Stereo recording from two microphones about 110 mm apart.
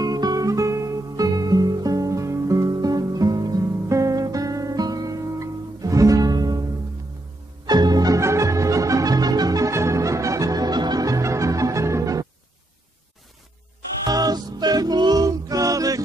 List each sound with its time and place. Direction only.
0.0 s music: 35° right (ahead or behind)
7.6 s music: 40° right (ahead or behind)
14.0 s music: 35° right (ahead or behind)